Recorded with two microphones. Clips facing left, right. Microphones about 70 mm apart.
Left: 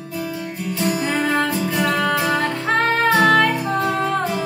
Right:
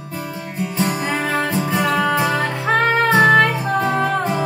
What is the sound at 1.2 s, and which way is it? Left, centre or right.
Music, right.